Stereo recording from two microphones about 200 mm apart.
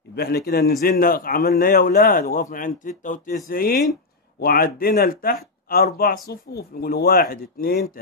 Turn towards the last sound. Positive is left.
turn(degrees=50)  # may be behind; listen again after turning